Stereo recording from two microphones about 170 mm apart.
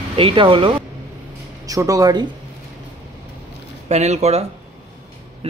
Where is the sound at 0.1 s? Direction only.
30° right (ahead or behind).